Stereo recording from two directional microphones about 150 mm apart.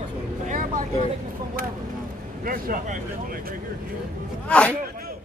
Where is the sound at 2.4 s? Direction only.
65° right (ahead or behind).